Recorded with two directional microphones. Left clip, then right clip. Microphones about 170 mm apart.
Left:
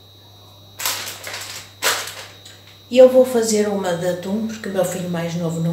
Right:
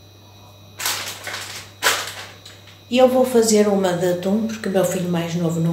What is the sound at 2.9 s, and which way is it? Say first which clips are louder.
Speech: left 4 dB; 25° right (ahead or behind).